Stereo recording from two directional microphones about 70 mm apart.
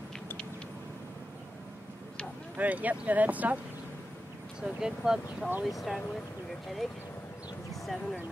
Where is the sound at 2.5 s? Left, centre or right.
Right.